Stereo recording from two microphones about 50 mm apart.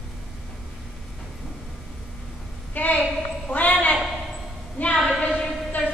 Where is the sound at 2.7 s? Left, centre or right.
Left.